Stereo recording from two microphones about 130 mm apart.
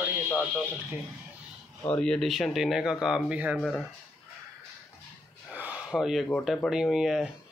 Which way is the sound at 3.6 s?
Centre (ahead or behind).